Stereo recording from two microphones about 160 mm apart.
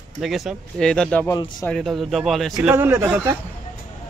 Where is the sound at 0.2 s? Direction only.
Centre (ahead or behind).